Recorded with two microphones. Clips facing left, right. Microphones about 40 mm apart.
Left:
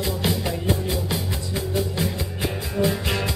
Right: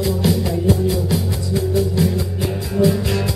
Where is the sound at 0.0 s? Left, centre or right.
Centre.